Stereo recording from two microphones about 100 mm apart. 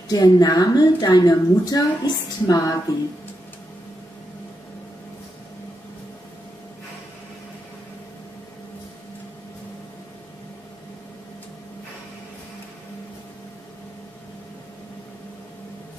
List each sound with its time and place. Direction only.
0.1 s a woman's voice: 40° left (ahead or behind)